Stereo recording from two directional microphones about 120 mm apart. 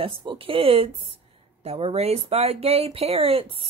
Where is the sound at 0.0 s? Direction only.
45° right (ahead or behind).